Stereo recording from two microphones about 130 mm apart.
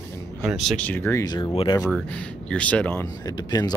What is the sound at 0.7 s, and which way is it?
Speech, 15° left (ahead or behind).